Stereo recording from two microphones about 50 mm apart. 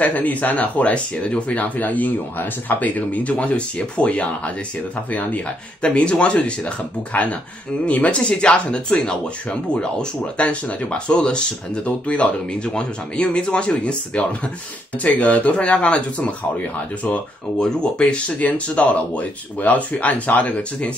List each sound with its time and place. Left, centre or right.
0.0 s speech: left
5.8 s speech: left
10.3 s speech: left
17.6 s speech: centre
18.4 s speech: left